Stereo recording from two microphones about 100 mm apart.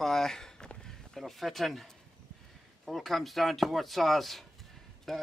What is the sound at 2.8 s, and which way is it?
Speech, centre (ahead or behind).